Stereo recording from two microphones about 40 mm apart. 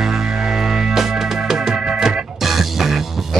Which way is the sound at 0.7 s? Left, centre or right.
Centre.